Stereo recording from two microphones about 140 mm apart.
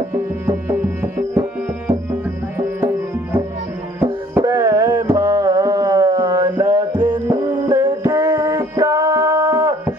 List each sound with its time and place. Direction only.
0.1 s music: 15° right (ahead or behind)
4.0 s music: 20° right (ahead or behind)
5.0 s mantra: 25° right (ahead or behind)
6.6 s music: 25° right (ahead or behind)
7.7 s music: 20° right (ahead or behind)